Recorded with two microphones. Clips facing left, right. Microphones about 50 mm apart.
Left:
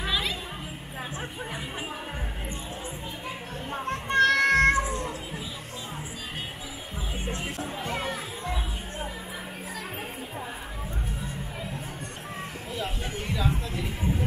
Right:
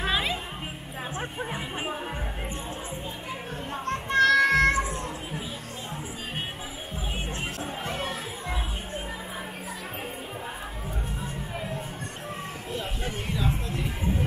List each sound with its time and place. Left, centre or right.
0.0 s music: right
1.1 s speech: right
3.7 s music: centre
4.7 s cat: centre